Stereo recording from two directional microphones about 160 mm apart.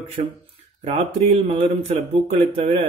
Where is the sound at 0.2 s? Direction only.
50° right (ahead or behind).